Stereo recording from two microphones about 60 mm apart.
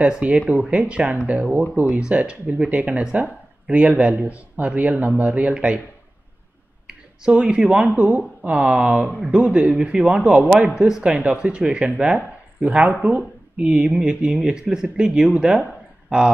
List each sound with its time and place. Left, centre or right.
0.0 s speech: centre
6.9 s speech: centre